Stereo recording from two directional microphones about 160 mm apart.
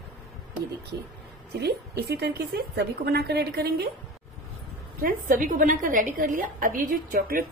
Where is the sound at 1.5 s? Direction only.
85° right.